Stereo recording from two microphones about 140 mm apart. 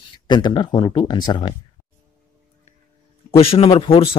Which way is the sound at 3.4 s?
40° left (ahead or behind).